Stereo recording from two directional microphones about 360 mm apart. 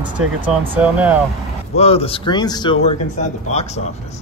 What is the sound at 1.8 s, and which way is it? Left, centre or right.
Speech, centre.